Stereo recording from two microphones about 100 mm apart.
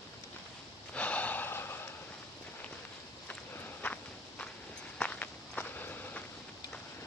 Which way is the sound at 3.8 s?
15° left (ahead or behind).